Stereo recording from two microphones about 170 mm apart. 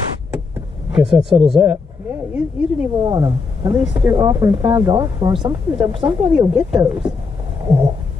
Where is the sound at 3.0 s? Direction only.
25° right (ahead or behind).